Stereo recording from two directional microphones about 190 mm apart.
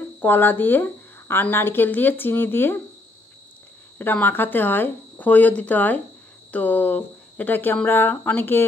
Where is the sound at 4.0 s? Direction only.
10° left (ahead or behind).